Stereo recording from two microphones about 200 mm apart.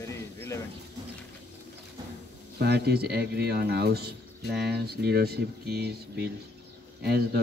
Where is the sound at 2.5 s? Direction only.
55° right (ahead or behind).